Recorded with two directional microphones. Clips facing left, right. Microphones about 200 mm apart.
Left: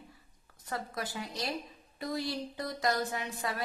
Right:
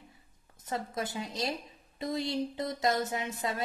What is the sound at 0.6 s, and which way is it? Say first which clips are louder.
A woman's voice: right 3 dB; 20° right (ahead or behind).